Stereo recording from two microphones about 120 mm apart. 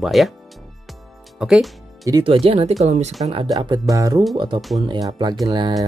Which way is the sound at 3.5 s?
35° right (ahead or behind).